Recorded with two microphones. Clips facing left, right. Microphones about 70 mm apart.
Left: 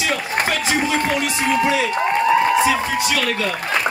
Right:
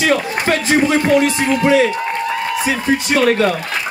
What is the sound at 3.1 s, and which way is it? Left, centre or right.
Speech, right.